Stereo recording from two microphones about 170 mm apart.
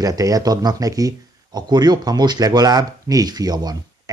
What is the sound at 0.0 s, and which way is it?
Speech, 20° right (ahead or behind).